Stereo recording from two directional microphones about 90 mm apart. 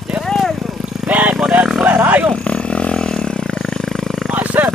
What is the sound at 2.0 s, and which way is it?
Roar, 20° right (ahead or behind).